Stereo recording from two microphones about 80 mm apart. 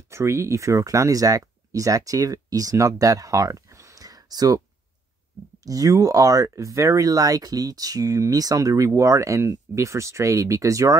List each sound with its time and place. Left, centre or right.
0.1 s speech: right
5.6 s speech: right